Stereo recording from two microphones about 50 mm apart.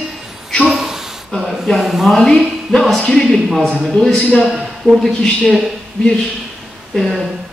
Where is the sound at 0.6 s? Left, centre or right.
Centre.